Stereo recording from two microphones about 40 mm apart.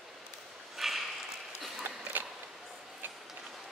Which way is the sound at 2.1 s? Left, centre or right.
Right.